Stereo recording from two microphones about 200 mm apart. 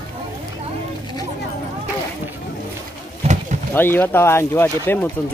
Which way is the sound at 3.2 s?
30° right (ahead or behind).